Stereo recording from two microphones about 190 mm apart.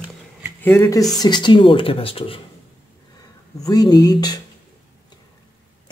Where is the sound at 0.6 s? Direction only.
15° left (ahead or behind); by 2.4 s 30° left (ahead or behind).